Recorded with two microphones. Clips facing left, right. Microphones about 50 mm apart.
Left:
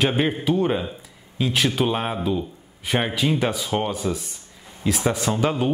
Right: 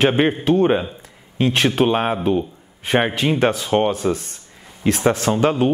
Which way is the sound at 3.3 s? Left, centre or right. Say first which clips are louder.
Right 6 dB; right.